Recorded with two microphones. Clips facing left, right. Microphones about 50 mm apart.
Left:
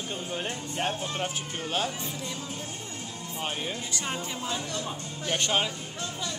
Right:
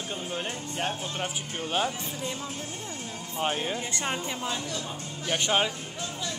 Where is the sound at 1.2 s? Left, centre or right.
Centre.